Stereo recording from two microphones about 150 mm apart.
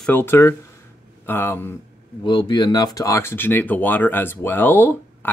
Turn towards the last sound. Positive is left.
turn(degrees=15)  # may be behind; listen again after turning